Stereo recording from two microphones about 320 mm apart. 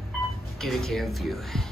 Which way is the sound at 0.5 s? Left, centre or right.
Centre.